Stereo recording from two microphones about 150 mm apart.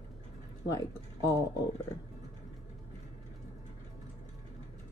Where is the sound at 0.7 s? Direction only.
20° left (ahead or behind).